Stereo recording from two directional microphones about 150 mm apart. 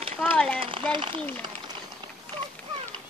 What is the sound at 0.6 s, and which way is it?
Speech, 35° right (ahead or behind).